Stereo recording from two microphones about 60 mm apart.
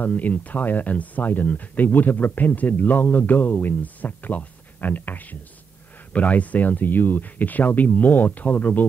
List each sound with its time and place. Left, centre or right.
0.0 s speech: left